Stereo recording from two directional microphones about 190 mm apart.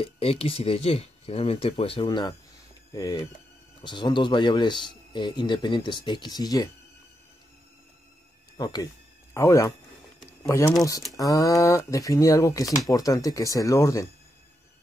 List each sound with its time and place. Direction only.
0.0 s speech: 30° left (ahead or behind)
8.5 s speech: 20° left (ahead or behind)
10.8 s speech: 20° left (ahead or behind)